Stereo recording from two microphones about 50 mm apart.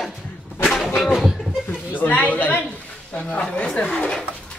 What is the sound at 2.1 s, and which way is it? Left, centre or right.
Speech, left.